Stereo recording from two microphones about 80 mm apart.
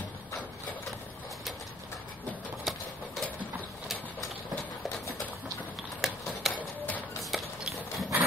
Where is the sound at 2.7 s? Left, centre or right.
Centre.